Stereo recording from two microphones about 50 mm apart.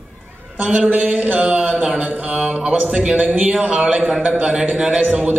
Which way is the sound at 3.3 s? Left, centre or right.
Right.